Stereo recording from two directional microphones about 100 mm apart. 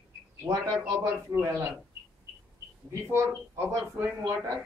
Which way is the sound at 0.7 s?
25° right (ahead or behind).